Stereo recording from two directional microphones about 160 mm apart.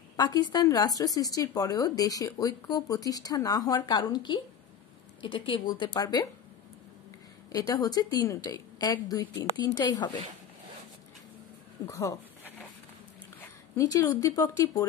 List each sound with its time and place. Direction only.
0.1 s a woman's voice: 25° left (ahead or behind)
7.5 s a woman's voice: 20° left (ahead or behind)
11.9 s a sound: 20° left (ahead or behind)
13.7 s a woman's voice: 20° left (ahead or behind)